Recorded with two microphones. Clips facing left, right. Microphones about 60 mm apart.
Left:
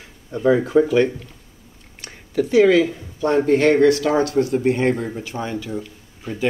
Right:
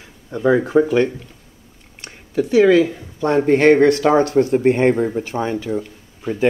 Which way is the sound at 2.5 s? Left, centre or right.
Right.